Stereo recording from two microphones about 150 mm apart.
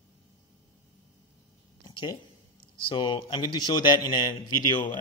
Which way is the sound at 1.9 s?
30° left (ahead or behind).